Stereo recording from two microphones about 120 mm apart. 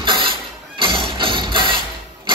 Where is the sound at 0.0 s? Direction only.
50° right (ahead or behind).